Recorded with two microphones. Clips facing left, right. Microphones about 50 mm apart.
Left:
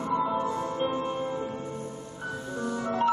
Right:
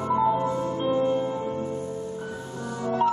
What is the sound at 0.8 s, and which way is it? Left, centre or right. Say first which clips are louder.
Music: right 8 dB; centre.